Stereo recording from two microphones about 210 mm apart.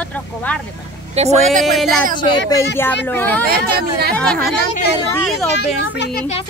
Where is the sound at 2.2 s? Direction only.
15° left (ahead or behind).